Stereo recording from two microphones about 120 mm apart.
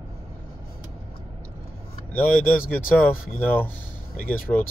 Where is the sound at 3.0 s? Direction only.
15° left (ahead or behind).